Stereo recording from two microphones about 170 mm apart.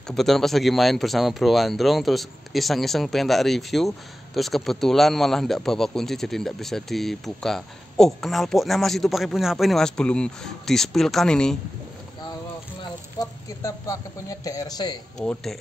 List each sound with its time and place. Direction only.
0.1 s speech: centre (ahead or behind)
13.6 s speech: 20° left (ahead or behind)
15.1 s speech: 5° left (ahead or behind)